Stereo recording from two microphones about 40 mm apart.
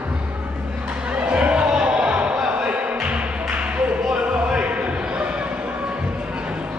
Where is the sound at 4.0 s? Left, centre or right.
Right.